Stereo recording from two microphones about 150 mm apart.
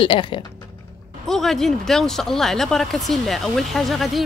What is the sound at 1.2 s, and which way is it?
Speech, centre (ahead or behind).